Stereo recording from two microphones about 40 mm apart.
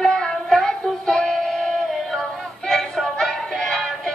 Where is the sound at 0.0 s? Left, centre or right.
Centre.